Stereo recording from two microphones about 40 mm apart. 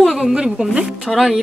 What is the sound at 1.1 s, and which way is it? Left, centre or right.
Music, centre.